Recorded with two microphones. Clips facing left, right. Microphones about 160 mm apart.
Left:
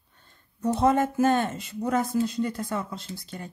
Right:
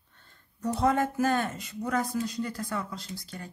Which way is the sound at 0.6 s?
20° left (ahead or behind).